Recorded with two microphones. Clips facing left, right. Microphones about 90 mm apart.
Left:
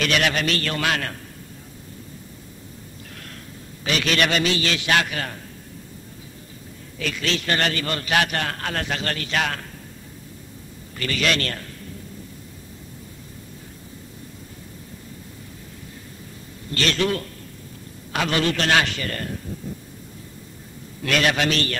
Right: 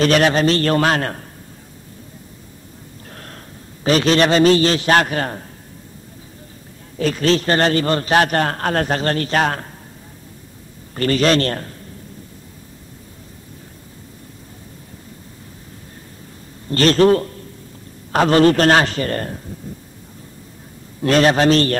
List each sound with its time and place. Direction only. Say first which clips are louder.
0.0 s a man's voice: right 8 dB; 35° right (ahead or behind)
3.1 s gasp: right 5 dB; 40° right (ahead or behind)
3.8 s a man's voice: right 8 dB; 35° right (ahead or behind)
7.0 s a man's voice: right 10 dB; 40° right (ahead or behind)
11.0 s a man's voice: right 8 dB; 40° right (ahead or behind)
16.7 s a man's voice: right 10 dB; 40° right (ahead or behind)
21.0 s a man's voice: right 8 dB; 35° right (ahead or behind)